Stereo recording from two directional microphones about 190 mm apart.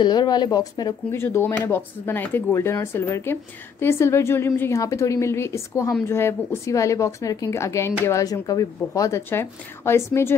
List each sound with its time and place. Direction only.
0.0 s speech: 20° left (ahead or behind)